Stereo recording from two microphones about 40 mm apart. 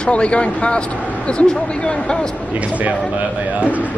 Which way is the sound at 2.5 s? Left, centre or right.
Right.